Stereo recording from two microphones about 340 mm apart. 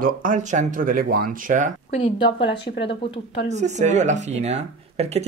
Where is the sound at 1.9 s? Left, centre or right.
Centre.